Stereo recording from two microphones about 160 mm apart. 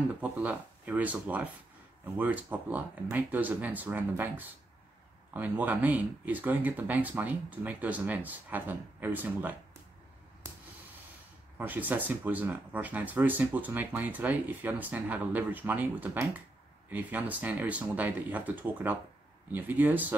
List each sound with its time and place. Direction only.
0.2 s speech: 10° right (ahead or behind)
11.5 s speech: 10° right (ahead or behind)